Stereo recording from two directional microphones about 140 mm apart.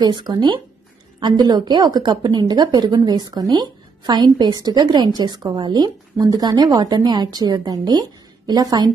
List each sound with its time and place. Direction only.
0.0 s a woman's voice: 30° right (ahead or behind)